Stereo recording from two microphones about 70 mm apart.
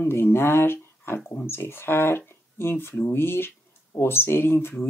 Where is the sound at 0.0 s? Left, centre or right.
Left.